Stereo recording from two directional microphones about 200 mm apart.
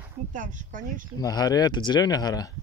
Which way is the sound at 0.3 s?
40° right (ahead or behind).